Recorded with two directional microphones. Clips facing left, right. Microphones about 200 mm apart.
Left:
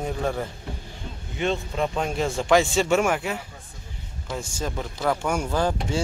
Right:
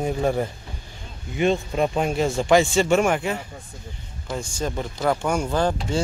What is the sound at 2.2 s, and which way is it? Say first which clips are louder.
Speech: right 2 dB; centre (ahead or behind).